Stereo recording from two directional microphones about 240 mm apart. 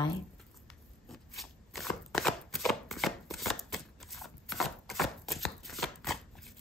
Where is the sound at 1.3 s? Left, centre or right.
Centre.